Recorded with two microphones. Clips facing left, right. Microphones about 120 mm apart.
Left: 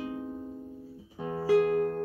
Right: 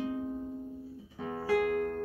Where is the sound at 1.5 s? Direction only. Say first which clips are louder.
Left 5 dB; 25° left (ahead or behind).